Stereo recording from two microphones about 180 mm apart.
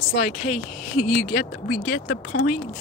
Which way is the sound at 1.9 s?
65° left (ahead or behind).